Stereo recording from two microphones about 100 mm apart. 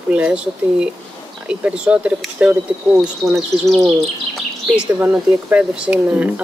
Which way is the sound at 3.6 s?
Centre (ahead or behind).